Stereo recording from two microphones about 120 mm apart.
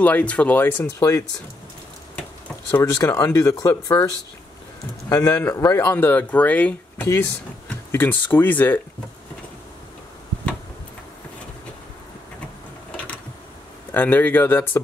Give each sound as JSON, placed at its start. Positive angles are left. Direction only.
{"t": 0.0, "sound": "speech", "side_deg": 10}
{"t": 2.8, "sound": "speech", "side_deg": 25}
{"t": 5.1, "sound": "speech", "side_deg": 30}
{"t": 12.9, "sound": "a sound", "side_deg": 10}
{"t": 13.9, "sound": "speech", "side_deg": 15}